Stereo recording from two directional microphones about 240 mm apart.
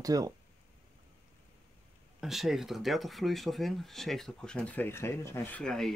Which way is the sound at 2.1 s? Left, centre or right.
Centre.